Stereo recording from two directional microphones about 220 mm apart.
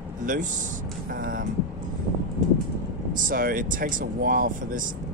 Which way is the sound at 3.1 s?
40° right (ahead or behind).